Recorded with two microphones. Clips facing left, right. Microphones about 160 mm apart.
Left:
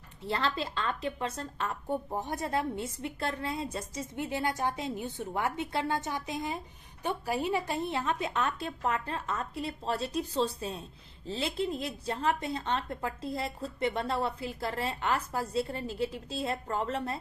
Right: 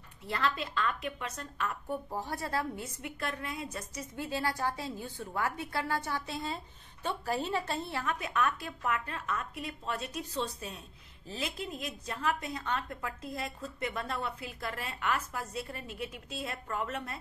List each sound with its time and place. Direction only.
0.3 s a woman's voice: 30° left (ahead or behind)